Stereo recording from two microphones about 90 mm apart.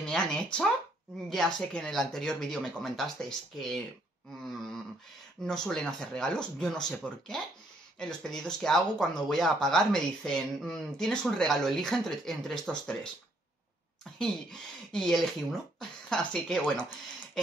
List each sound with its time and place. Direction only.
0.0 s speech: 5° left (ahead or behind)
14.1 s speech: 5° left (ahead or behind)